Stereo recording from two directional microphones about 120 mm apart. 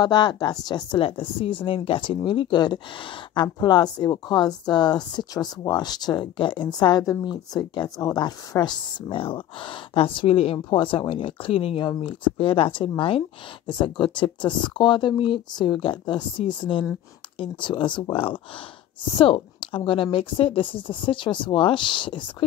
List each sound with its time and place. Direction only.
0.0 s a woman's voice: 40° left (ahead or behind)
1.0 s a woman's voice: 50° left (ahead or behind)
9.1 s a woman's voice: 45° left (ahead or behind)